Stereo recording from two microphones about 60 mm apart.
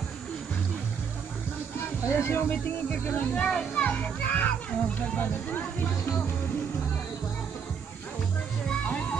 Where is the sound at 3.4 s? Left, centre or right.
Centre.